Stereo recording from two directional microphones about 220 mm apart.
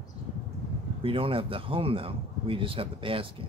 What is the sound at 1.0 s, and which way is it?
Speech, 25° right (ahead or behind).